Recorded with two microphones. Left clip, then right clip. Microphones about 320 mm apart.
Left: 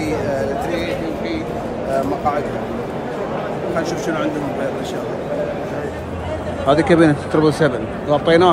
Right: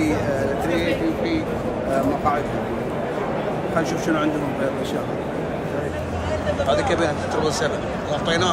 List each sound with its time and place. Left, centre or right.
3.7 s speech: centre
6.7 s speech: left